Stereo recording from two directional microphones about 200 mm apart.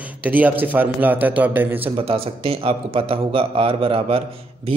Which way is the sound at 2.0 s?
30° right (ahead or behind).